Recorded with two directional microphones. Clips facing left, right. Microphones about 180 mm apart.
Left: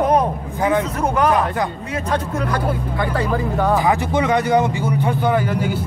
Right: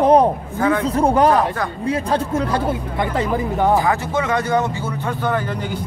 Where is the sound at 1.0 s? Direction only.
30° right (ahead or behind).